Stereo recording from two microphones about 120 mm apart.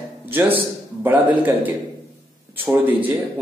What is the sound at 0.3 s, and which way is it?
A man's voice, 15° right (ahead or behind).